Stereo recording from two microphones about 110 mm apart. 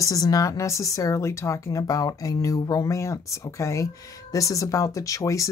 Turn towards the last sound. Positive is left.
turn(degrees=30)  # may be behind; listen again after turning